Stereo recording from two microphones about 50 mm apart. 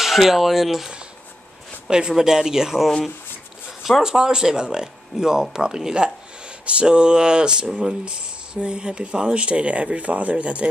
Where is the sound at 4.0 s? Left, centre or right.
Centre.